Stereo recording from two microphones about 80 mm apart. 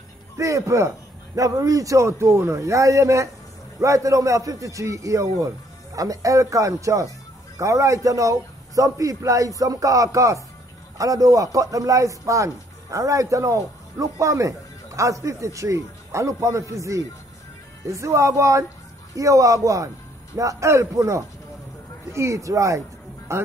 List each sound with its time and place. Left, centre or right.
0.4 s a man's voice: right